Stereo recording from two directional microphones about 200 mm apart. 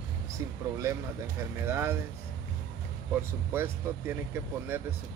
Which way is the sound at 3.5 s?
10° right (ahead or behind).